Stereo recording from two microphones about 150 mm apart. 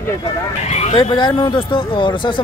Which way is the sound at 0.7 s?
45° left (ahead or behind).